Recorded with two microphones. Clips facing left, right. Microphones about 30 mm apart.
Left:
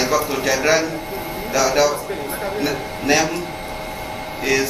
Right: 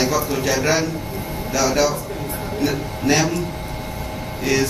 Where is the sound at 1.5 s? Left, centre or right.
Centre.